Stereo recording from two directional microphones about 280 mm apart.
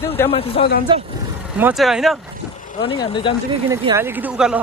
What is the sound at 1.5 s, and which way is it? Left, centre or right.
Speech, centre.